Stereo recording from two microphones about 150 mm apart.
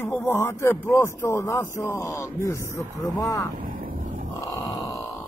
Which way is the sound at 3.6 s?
65° right (ahead or behind).